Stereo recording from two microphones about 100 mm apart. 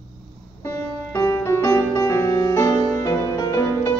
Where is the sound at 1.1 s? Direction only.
30° left (ahead or behind).